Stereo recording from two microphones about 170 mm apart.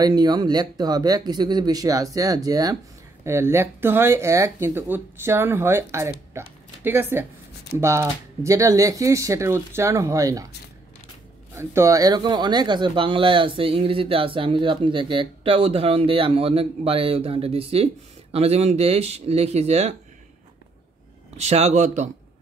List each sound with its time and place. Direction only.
0.0 s speech: 25° right (ahead or behind)
6.3 s a sound: 15° right (ahead or behind)
7.8 s speech: 15° right (ahead or behind)
11.5 s speech: 15° right (ahead or behind); by 20.0 s 40° right (ahead or behind)
21.4 s speech: 40° right (ahead or behind)